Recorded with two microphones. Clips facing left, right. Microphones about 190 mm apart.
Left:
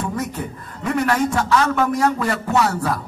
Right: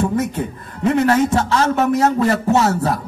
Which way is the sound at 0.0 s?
25° right (ahead or behind).